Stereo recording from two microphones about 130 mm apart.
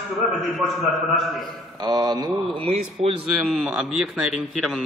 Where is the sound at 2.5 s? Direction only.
45° right (ahead or behind).